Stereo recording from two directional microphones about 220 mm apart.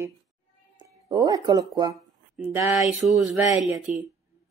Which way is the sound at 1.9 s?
Centre (ahead or behind).